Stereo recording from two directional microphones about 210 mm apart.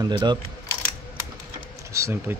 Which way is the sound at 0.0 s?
20° right (ahead or behind).